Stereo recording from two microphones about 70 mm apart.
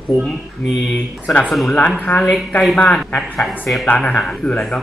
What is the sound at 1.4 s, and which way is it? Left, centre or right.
Speech, centre.